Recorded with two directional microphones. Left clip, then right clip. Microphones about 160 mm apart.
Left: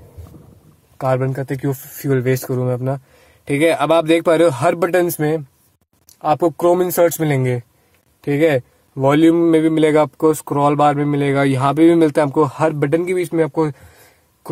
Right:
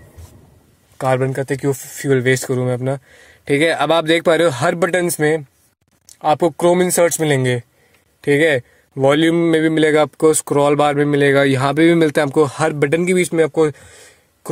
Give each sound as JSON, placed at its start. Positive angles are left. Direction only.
{"t": 0.9, "sound": "speech", "side_deg": -40}
{"t": 1.6, "sound": "speech", "side_deg": -50}
{"t": 2.0, "sound": "speech", "side_deg": -30}
{"t": 6.6, "sound": "speech", "side_deg": -40}
{"t": 7.1, "sound": "speech", "side_deg": -30}
{"t": 10.1, "sound": "speech", "side_deg": -50}
{"t": 10.5, "sound": "speech", "side_deg": -35}
{"t": 11.5, "sound": "speech", "side_deg": -25}
{"t": 12.1, "sound": "speech", "side_deg": -40}